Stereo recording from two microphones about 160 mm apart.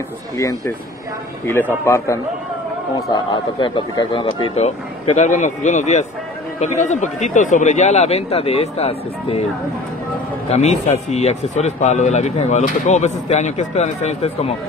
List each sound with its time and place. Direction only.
1.4 s a man's voice: 15° left (ahead or behind)
3.1 s a man's voice: 30° left (ahead or behind)
10.5 s a man's voice: 40° left (ahead or behind)